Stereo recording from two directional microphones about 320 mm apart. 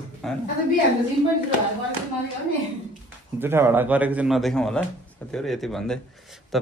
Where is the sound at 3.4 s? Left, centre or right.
Centre.